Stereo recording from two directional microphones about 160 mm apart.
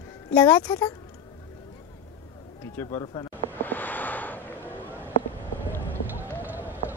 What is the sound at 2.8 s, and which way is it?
Speech, 15° left (ahead or behind).